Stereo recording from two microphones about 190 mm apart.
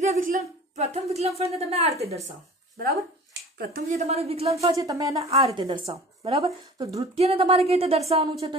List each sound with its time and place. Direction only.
0.0 s speech: 40° right (ahead or behind)
3.5 s speech: 55° right (ahead or behind)
3.9 s speech: 35° right (ahead or behind)
4.7 s speech: 20° right (ahead or behind)